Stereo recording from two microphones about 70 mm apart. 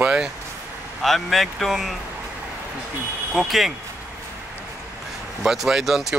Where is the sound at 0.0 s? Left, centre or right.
Centre.